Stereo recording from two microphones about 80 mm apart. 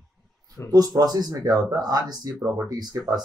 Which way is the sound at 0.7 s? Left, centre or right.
Right.